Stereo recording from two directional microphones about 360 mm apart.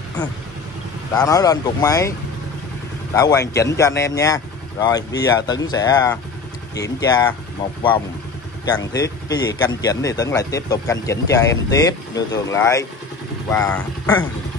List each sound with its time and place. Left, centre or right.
1.1 s speech: centre
3.2 s speech: centre
8.6 s speech: centre